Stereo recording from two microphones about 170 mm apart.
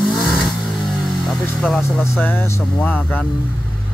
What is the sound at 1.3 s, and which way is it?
Speech, 5° left (ahead or behind).